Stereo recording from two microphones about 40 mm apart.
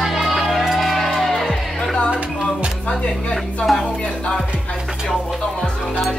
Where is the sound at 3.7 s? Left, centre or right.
Centre.